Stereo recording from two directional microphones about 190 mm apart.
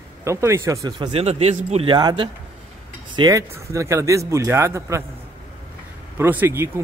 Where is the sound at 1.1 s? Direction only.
35° right (ahead or behind); by 5.0 s 15° right (ahead or behind).